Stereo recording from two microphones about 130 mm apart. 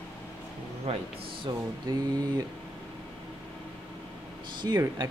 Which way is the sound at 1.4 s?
30° right (ahead or behind).